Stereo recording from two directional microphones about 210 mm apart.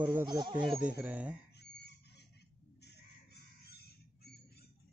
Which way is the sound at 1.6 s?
50° left (ahead or behind).